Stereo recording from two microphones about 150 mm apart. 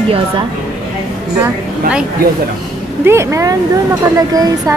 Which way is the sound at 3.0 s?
20° right (ahead or behind).